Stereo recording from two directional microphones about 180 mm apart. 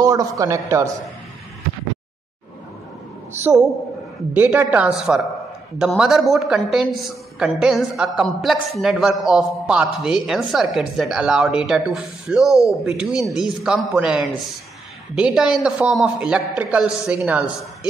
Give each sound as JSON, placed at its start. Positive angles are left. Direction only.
{"t": 0.0, "sound": "a man's voice", "side_deg": -20}
{"t": 4.3, "sound": "a man's voice", "side_deg": -10}
{"t": 12.4, "sound": "speech", "side_deg": 15}
{"t": 12.8, "sound": "a woman's voice", "side_deg": -5}